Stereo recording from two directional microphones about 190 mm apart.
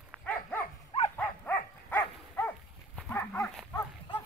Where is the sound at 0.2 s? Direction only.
10° left (ahead or behind).